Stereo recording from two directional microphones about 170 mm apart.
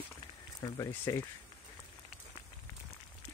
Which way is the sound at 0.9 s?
15° left (ahead or behind).